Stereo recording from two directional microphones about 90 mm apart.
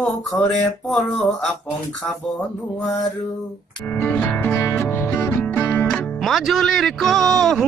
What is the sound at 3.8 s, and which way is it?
Music, 20° left (ahead or behind).